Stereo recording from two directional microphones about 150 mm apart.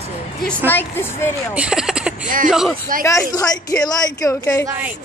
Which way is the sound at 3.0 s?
20° left (ahead or behind).